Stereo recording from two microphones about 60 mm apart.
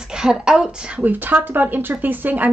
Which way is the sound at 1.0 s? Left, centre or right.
Right.